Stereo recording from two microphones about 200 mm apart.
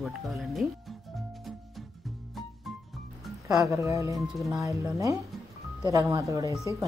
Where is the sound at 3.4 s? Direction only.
15° right (ahead or behind).